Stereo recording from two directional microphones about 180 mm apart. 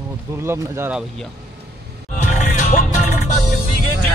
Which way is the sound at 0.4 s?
15° right (ahead or behind).